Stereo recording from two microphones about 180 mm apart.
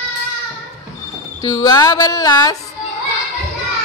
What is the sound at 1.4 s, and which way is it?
Speech, 20° left (ahead or behind).